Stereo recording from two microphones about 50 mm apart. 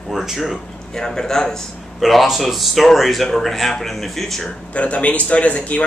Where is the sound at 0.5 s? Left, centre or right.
Centre.